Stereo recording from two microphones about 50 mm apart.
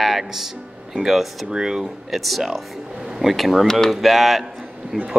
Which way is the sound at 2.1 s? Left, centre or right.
Centre.